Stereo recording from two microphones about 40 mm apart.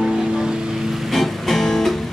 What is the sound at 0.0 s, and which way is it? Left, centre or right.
Music, centre.